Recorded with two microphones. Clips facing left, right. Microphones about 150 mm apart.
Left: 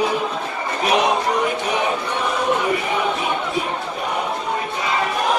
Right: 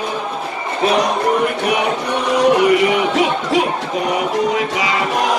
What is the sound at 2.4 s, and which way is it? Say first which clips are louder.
Music: right 10 dB; 90° right.